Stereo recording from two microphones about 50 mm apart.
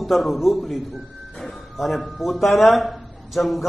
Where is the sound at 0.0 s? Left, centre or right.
Centre.